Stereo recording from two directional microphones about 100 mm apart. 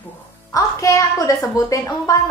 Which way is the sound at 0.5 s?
35° left (ahead or behind).